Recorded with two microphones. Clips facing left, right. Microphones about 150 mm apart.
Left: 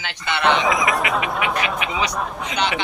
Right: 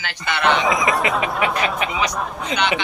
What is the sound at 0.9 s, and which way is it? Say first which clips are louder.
Speech: right 2 dB; 30° right (ahead or behind).